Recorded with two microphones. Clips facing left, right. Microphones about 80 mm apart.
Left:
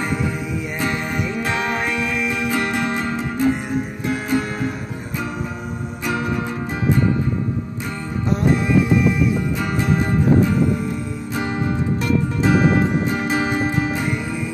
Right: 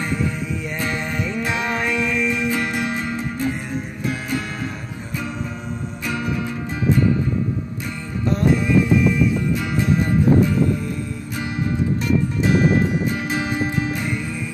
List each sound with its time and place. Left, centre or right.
0.7 s music: centre
2.5 s music: left
2.9 s music: left
11.3 s music: left
12.4 s music: left
13.2 s music: left